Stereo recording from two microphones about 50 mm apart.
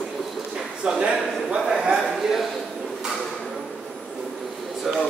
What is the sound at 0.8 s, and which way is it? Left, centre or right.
Speech, centre.